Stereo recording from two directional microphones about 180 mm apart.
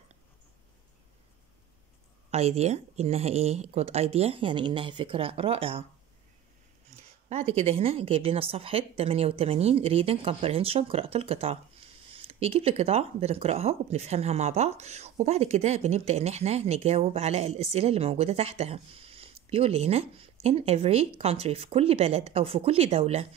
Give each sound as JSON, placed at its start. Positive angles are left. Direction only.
{"t": 2.3, "sound": "speech", "side_deg": -35}
{"t": 7.0, "sound": "speech", "side_deg": -35}